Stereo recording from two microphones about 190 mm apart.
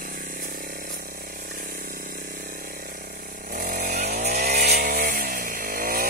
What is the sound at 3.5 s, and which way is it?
Vehicle, 50° right (ahead or behind).